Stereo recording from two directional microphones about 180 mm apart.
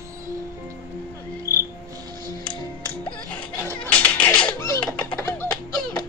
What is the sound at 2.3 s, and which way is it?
Music, 5° left (ahead or behind).